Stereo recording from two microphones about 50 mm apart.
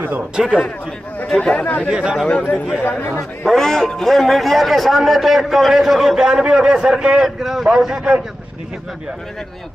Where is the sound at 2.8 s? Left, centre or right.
Left.